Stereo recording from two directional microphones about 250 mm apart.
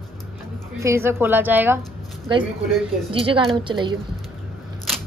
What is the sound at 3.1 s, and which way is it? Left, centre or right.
Speech, right.